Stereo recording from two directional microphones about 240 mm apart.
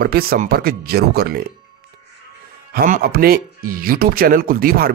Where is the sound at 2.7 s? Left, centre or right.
Right.